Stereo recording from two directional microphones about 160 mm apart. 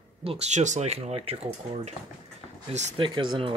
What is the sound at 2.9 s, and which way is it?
Speech, 30° right (ahead or behind).